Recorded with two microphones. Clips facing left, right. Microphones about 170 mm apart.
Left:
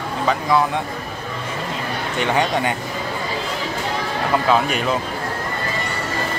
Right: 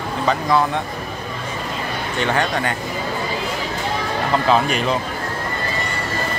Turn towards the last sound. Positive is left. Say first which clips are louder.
# right 1 dB
turn(degrees=5)  # may be behind; listen again after turning